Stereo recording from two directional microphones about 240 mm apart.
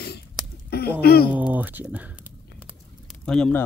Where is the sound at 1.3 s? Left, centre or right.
Centre.